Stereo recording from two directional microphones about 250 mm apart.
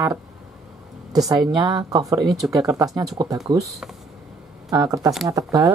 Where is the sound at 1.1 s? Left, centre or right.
Centre.